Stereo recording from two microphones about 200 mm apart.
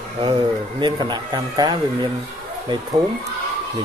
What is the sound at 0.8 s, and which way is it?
Speech, 20° right (ahead or behind).